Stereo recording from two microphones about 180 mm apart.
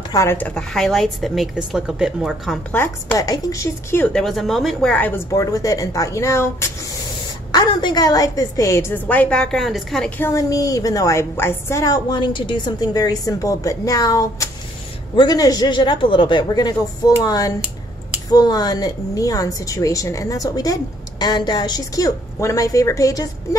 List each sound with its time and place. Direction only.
0.1 s a woman's voice: 15° left (ahead or behind); by 2.6 s centre (ahead or behind)
2.7 s a woman's voice: 10° left (ahead or behind)
7.5 s a woman's voice: 25° left (ahead or behind)